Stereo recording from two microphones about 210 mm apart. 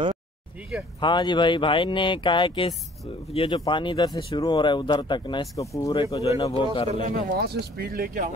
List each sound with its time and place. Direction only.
1.0 s speech: 20° left (ahead or behind)
7.2 s speech: 50° right (ahead or behind)